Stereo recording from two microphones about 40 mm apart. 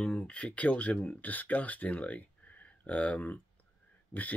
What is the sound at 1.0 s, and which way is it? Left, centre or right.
Speech, left.